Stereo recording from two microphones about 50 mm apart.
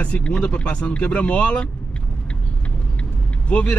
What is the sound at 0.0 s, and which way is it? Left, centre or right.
Speech, left.